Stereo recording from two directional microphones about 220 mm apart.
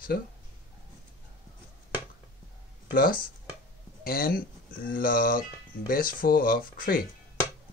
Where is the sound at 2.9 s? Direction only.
40° left (ahead or behind).